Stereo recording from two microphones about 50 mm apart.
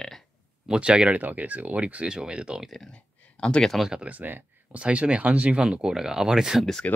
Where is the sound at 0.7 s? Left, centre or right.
Right.